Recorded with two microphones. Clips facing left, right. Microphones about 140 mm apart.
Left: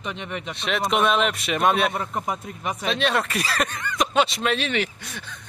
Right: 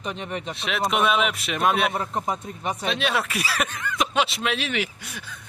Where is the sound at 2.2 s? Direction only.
30° right (ahead or behind).